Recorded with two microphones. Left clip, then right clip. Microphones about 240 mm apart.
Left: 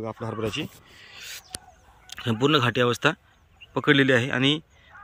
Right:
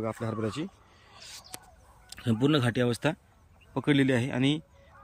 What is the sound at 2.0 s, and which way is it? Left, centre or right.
Speech, centre.